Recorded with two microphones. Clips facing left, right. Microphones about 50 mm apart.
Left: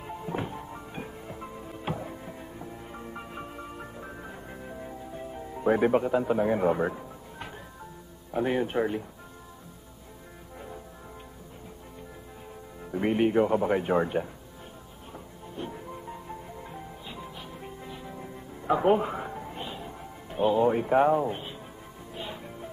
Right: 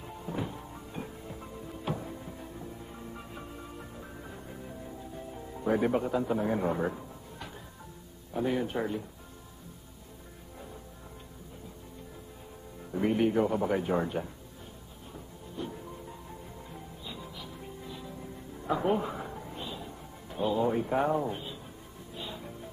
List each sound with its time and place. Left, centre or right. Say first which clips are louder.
0.0 s music: left 3 dB; left
5.9 s speech: left 4 dB; left
8.3 s speech: left 3 dB; left
13.0 s speech: left 3 dB; left
15.5 s music: left 2 dB; left